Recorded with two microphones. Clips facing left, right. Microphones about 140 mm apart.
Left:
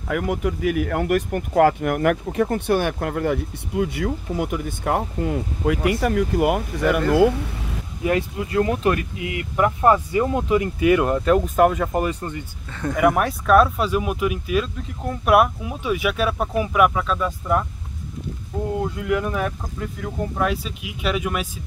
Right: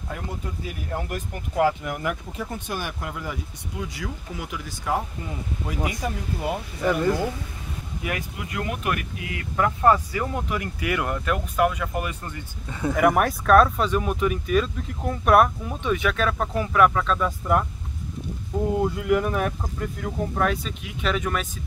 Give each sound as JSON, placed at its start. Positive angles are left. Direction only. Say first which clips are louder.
{"t": 0.1, "sound": "speech", "louder": "left 11 dB", "side_deg": 90}
{"t": 8.0, "sound": "speech", "louder": "left 10 dB", "side_deg": 30}
{"t": 11.5, "sound": "speech", "louder": "left 5 dB", "side_deg": 45}
{"t": 12.6, "sound": "speech", "louder": "right 1 dB", "side_deg": -10}
{"t": 12.9, "sound": "speech", "louder": "left 1 dB", "side_deg": 0}
{"t": 18.7, "sound": "speech", "louder": "right 1 dB", "side_deg": -5}